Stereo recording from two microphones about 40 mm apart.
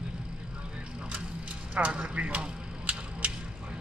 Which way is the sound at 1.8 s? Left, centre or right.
Right.